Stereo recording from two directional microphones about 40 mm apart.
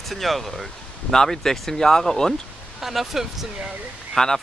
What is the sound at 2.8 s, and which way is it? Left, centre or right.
Speech, centre.